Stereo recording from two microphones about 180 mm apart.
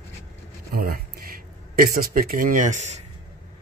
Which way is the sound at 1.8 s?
50° right (ahead or behind).